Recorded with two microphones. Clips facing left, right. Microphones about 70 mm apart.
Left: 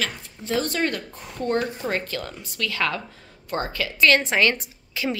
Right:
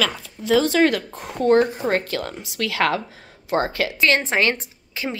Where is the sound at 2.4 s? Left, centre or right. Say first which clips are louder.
Right 4 dB; right.